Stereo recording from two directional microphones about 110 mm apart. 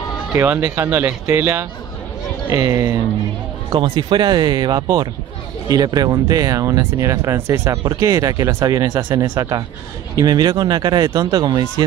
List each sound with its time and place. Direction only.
0.4 s speech: 20° right (ahead or behind)
2.5 s speech: 35° right (ahead or behind)
3.7 s speech: 50° right (ahead or behind)